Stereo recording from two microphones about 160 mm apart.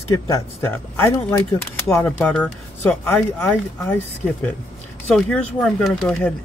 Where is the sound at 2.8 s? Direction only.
15° left (ahead or behind).